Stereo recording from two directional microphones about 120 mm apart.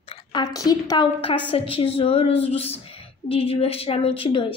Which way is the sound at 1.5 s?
50° left (ahead or behind).